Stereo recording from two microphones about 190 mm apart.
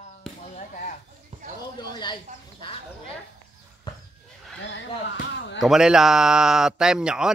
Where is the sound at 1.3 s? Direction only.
40° right (ahead or behind).